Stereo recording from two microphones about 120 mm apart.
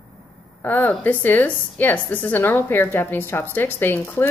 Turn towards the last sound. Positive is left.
turn(degrees=15)  # may be behind; listen again after turning